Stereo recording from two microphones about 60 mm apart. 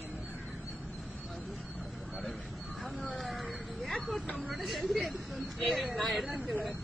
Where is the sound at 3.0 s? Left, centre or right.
Centre.